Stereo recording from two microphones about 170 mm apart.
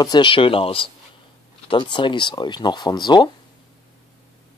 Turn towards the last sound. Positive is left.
turn(degrees=25)  # may be behind; listen again after turning